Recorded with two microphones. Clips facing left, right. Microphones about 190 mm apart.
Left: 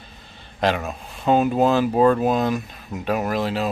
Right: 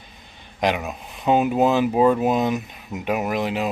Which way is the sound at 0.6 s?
15° right (ahead or behind).